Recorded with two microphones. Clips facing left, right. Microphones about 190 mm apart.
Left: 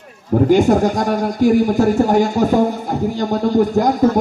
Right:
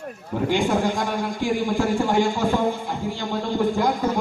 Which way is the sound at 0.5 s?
45° left (ahead or behind).